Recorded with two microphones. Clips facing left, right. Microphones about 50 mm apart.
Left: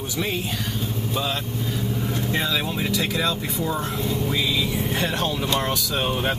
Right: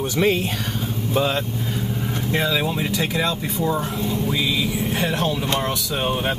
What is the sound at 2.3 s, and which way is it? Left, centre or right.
Speech, centre.